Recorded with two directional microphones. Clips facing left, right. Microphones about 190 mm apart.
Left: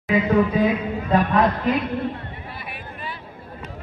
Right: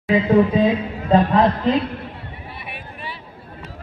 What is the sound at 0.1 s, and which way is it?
A man's voice, 30° right (ahead or behind).